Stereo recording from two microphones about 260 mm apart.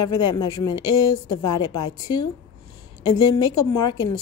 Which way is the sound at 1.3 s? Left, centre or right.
Left.